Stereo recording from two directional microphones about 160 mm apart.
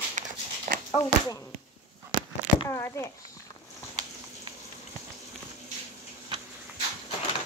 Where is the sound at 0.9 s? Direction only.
25° left (ahead or behind).